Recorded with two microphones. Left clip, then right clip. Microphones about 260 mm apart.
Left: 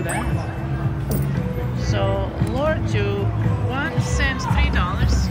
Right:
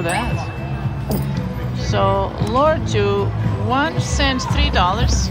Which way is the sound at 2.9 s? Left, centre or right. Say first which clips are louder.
Right 6 dB; centre.